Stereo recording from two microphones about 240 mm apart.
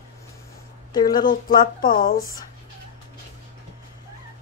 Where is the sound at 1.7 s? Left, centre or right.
Left.